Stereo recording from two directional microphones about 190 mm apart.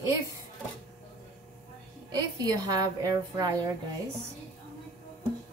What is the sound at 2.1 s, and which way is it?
A woman's voice, 20° right (ahead or behind).